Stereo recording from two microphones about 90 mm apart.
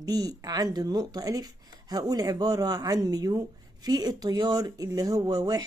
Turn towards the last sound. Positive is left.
turn(degrees=-45)  # may be behind; listen again after turning